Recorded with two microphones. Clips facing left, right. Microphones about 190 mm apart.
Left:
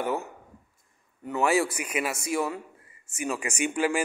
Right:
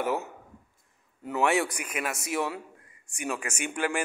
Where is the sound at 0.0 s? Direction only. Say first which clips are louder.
Even; centre (ahead or behind).